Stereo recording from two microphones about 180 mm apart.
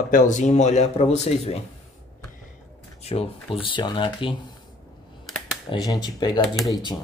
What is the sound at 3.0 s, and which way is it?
Speech, 35° left (ahead or behind).